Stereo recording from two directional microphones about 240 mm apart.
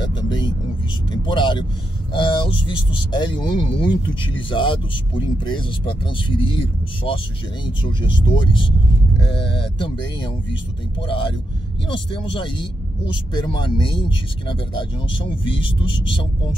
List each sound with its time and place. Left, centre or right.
0.0 s music: centre
1.1 s speech: centre
9.8 s speech: centre
12.4 s speech: centre